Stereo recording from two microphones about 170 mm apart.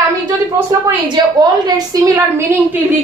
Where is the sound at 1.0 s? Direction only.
25° right (ahead or behind).